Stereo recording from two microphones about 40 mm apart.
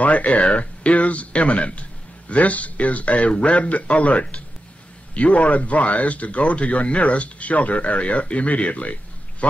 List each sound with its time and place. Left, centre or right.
0.0 s speech: left